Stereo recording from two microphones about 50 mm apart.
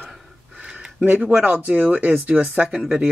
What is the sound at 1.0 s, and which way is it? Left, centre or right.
Speech, right.